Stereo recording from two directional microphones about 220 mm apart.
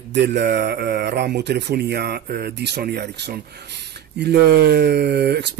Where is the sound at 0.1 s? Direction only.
50° right (ahead or behind).